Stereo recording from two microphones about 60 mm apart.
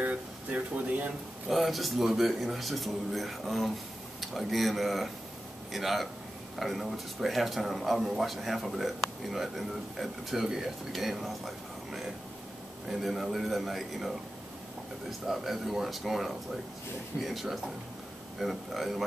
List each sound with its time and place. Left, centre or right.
0.0 s speech: right
1.5 s speech: centre